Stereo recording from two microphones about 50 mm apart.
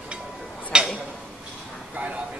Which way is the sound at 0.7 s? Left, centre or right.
Centre.